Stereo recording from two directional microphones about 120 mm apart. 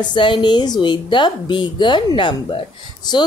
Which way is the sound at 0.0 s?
40° left (ahead or behind).